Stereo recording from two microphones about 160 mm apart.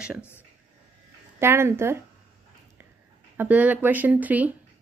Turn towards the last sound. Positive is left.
turn(degrees=-10)  # may be behind; listen again after turning